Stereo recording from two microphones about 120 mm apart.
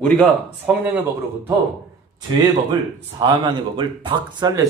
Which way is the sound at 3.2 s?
40° right (ahead or behind).